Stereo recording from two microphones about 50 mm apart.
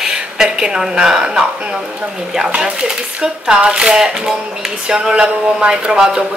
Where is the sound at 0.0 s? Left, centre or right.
Centre.